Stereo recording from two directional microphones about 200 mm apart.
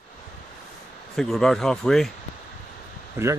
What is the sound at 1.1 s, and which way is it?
Speech, centre (ahead or behind).